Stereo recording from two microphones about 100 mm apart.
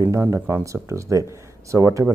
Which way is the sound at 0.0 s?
30° right (ahead or behind).